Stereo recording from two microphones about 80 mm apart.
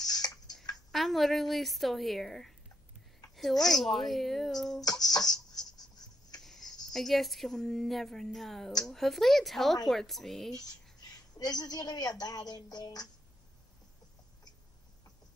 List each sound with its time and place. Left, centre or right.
0.0 s tick-tock: left
0.9 s a woman's voice: centre
4.8 s a sound: left
6.4 s a woman's voice: centre
10.5 s a woman's voice: left
12.2 s music: left